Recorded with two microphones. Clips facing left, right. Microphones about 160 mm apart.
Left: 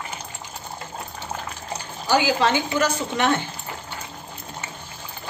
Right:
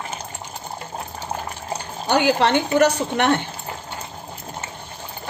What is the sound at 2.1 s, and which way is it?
Speech, 60° right (ahead or behind).